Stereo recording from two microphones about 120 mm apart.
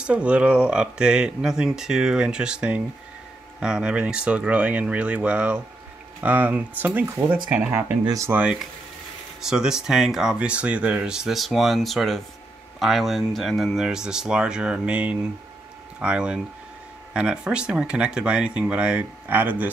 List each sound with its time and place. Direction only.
0.0 s speech: 10° right (ahead or behind)
8.0 s speech: 30° right (ahead or behind)
8.3 s speech: 10° right (ahead or behind)